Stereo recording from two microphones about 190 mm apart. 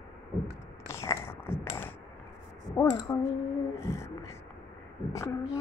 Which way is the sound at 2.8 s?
15° left (ahead or behind).